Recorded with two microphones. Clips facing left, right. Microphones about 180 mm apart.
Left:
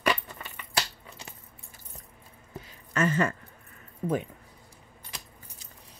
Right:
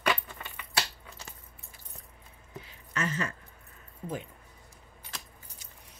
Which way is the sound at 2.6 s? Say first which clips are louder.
Left 7 dB; 50° left (ahead or behind).